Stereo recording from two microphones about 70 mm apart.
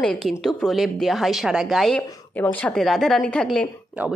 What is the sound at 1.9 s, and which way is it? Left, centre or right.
Speech, left.